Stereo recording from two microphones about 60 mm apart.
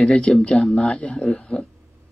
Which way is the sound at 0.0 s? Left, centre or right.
Centre.